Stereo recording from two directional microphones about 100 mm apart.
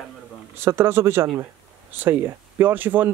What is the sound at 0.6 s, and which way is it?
Speech, 25° right (ahead or behind).